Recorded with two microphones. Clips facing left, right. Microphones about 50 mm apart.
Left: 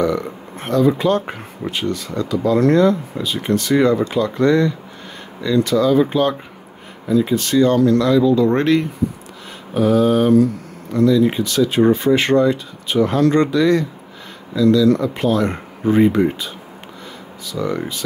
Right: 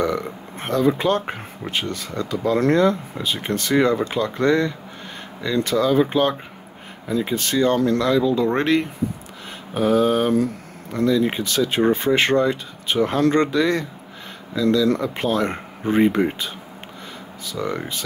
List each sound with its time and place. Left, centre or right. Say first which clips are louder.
0.0 s speech: left 3 dB; right